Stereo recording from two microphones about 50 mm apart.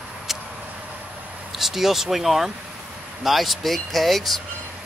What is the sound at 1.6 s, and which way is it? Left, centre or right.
Speech, centre.